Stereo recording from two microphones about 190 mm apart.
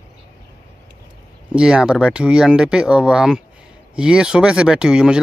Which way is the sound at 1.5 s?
5° right (ahead or behind).